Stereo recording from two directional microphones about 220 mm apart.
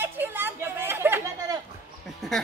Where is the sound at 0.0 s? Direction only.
10° right (ahead or behind).